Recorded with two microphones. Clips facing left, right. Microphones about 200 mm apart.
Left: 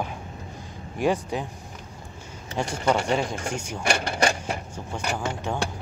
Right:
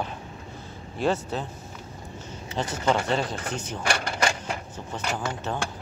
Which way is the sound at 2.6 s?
10° left (ahead or behind).